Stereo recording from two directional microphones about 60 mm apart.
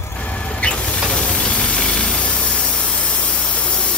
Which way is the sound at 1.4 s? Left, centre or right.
Centre.